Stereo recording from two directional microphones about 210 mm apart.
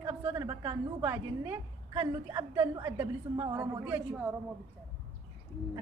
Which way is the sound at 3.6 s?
5° right (ahead or behind).